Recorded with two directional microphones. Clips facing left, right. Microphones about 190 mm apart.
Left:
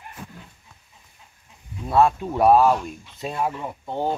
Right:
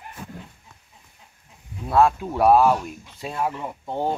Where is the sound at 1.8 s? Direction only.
Centre (ahead or behind).